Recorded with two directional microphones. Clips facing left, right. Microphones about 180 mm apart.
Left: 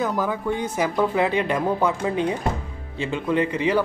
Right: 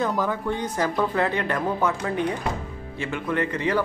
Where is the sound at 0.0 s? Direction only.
5° left (ahead or behind).